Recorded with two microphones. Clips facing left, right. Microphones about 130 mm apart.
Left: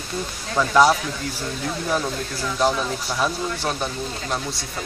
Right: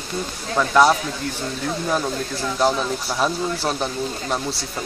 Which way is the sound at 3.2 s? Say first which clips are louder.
Right 2 dB; 25° right (ahead or behind).